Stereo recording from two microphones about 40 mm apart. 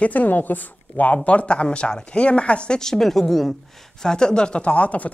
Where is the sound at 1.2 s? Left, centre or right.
Left.